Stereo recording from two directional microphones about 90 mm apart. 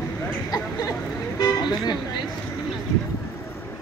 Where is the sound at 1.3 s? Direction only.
40° left (ahead or behind).